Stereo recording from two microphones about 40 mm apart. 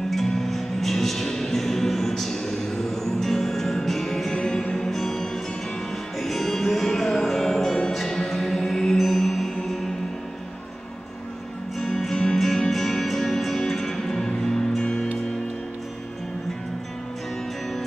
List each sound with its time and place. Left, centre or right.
0.1 s music: centre
12.0 s music: centre